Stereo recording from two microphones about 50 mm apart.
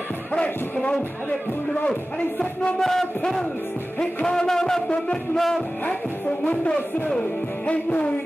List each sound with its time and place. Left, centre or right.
2.1 s speech: left
2.8 s music: centre
4.8 s speech: centre
6.4 s speech: left